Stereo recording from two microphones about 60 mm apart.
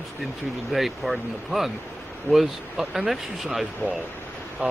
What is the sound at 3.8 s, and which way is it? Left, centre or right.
Speech, left.